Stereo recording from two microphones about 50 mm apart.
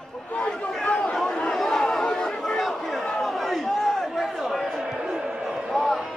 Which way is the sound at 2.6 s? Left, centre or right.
Centre.